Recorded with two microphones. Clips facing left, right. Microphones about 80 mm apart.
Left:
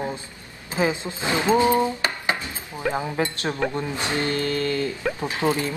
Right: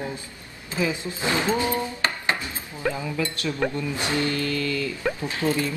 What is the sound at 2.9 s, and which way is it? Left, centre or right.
Speech, left.